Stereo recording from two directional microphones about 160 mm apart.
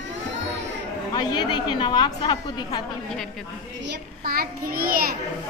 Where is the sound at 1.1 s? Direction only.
30° left (ahead or behind).